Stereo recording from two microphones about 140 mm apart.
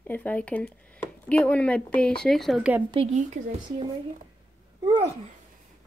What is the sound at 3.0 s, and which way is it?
Speech, 45° right (ahead or behind).